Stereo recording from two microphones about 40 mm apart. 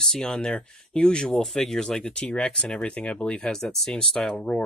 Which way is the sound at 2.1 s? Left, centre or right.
Left.